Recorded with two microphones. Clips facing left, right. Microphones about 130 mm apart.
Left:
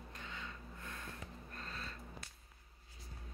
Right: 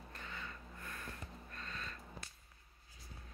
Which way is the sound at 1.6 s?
35° left (ahead or behind).